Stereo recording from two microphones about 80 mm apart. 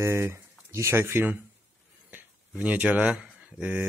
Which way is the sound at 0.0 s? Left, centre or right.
Right.